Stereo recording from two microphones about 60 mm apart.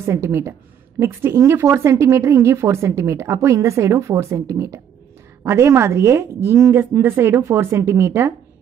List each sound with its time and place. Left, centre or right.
0.0 s a woman's voice: right